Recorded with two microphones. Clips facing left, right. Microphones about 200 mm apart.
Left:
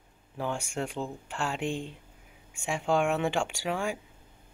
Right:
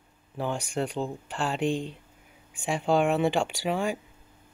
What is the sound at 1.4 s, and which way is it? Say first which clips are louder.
Speech: right 4 dB; 35° right (ahead or behind).